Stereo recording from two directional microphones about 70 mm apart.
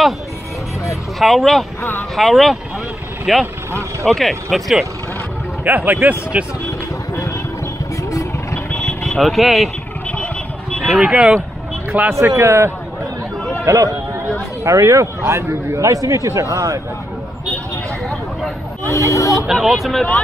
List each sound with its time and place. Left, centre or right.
1.2 s speech: centre
5.6 s a man's voice: right
8.7 s vehicle: centre
10.9 s speech: centre
12.1 s a man's voice: right
13.7 s a sound: right
14.6 s a man's voice: right
18.9 s speech: left
19.3 s speech: centre